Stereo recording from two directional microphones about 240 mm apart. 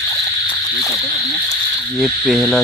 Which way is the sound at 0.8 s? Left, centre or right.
Centre.